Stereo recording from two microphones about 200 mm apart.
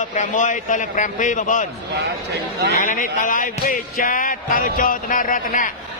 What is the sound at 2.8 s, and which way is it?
Speech, 40° left (ahead or behind).